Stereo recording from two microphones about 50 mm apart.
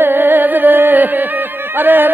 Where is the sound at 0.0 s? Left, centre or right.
Right.